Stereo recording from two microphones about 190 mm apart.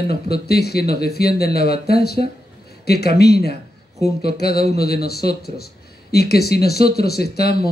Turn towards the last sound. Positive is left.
turn(degrees=55)  # may be behind; listen again after turning